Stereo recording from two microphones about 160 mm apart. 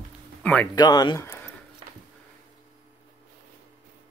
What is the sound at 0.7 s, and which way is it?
Speech, 25° left (ahead or behind).